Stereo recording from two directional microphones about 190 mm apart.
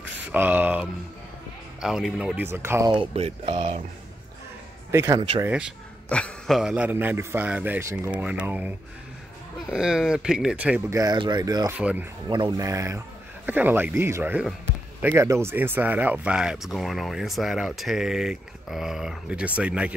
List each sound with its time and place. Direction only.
0.3 s a man's voice: 10° right (ahead or behind)
2.9 s speech: 30° right (ahead or behind)
4.9 s a man's voice: 15° right (ahead or behind)
6.0 s a man's voice: 5° left (ahead or behind)
11.0 s a man's voice: 20° right (ahead or behind)
12.3 s a man's voice: 20° right (ahead or behind); by 19.9 s 5° right (ahead or behind)